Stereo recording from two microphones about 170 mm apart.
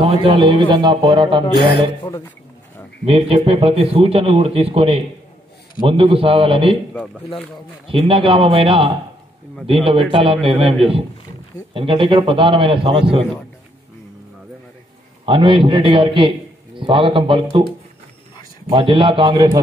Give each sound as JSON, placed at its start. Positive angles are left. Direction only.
{"t": 0.0, "sound": "a man's voice", "side_deg": -30}
{"t": 3.1, "sound": "a man's voice", "side_deg": -35}
{"t": 7.9, "sound": "a man's voice", "side_deg": -35}
{"t": 10.1, "sound": "a man's voice", "side_deg": -35}
{"t": 15.2, "sound": "a man's voice", "side_deg": -30}
{"t": 18.7, "sound": "a man's voice", "side_deg": -30}